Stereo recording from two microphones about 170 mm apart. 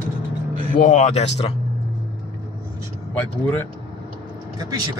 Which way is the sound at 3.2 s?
10° left (ahead or behind).